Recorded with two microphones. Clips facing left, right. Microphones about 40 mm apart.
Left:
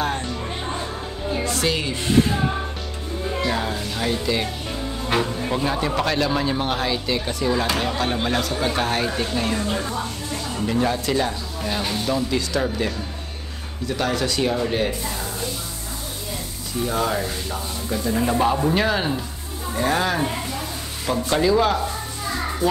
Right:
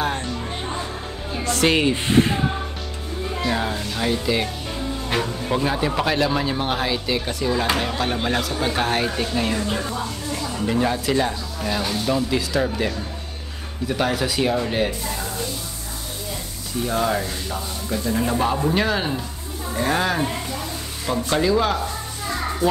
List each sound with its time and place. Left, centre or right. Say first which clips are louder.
0.0 s music: even; centre
1.4 s music: right 6 dB; right
3.3 s speech: even; centre
5.5 s speech: right 3 dB; centre
10.7 s speech: right 1 dB; centre
16.8 s speech: right 1 dB; centre